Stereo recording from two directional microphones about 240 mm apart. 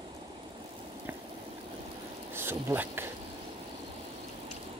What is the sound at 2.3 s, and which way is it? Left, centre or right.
Speech, centre.